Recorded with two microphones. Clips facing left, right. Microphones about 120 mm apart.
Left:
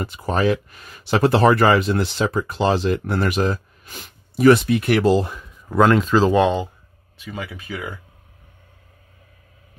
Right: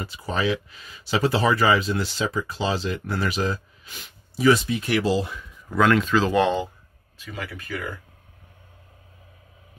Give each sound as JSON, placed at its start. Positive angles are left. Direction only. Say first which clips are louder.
{"t": 0.0, "sound": "speech", "louder": "left 5 dB", "side_deg": 50}
{"t": 6.3, "sound": "speech", "louder": "left 3 dB", "side_deg": 15}